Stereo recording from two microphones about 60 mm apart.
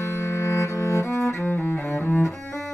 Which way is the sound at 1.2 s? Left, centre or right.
Left.